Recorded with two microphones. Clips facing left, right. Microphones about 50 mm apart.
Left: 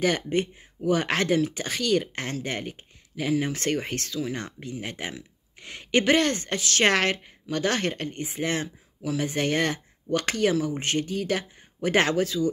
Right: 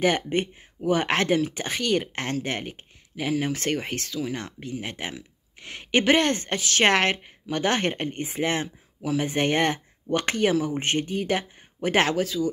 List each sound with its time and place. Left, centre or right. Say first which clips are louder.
0.0 s a woman's voice: right 1 dB; centre
8.5 s speech: even; centre
11.9 s a woman's voice: even; centre